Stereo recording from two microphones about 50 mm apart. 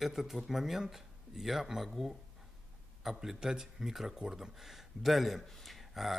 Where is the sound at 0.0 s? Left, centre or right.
Centre.